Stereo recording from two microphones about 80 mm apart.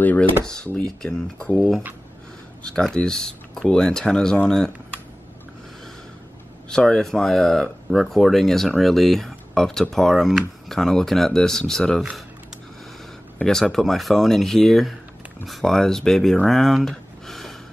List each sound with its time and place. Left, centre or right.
0.0 s speech: left
0.8 s speech: centre
6.7 s speech: centre
13.4 s speech: centre